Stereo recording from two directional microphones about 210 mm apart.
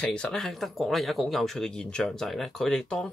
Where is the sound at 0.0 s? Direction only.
5° left (ahead or behind).